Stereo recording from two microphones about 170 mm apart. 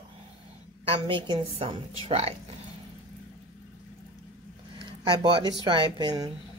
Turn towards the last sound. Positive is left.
turn(degrees=-25)  # may be behind; listen again after turning